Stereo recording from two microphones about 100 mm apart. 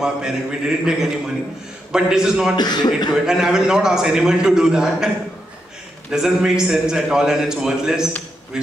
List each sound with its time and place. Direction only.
0.0 s a man's voice: 10° right (ahead or behind)
2.5 s speech: 45° left (ahead or behind)
3.3 s a man's voice: 5° right (ahead or behind)
6.1 s a man's voice: 5° right (ahead or behind)